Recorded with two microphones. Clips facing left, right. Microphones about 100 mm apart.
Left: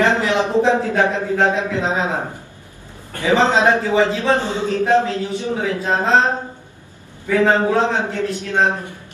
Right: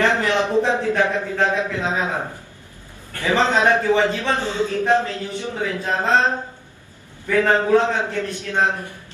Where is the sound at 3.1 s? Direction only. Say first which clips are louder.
Left 3 dB; 15° left (ahead or behind).